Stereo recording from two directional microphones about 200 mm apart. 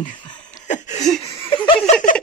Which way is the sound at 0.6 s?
35° left (ahead or behind).